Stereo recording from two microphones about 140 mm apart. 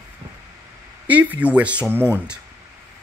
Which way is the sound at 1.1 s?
10° right (ahead or behind).